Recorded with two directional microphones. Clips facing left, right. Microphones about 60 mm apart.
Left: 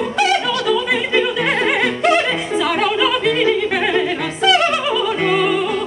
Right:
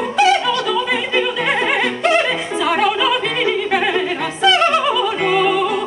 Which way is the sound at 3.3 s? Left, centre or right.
Right.